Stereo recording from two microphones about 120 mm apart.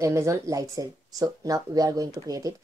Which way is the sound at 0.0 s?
25° right (ahead or behind).